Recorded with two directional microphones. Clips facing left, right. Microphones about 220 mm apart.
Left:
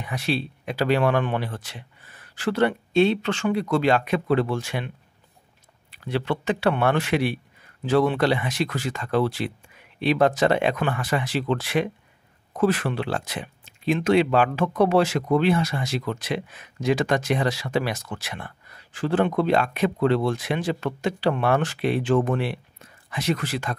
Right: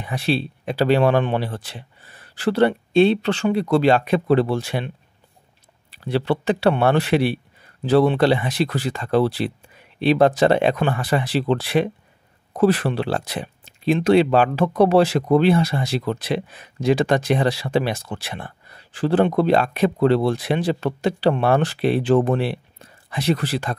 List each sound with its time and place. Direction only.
0.0 s speech: 30° right (ahead or behind)